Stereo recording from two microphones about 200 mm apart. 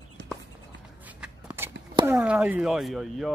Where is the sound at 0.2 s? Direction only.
55° right (ahead or behind).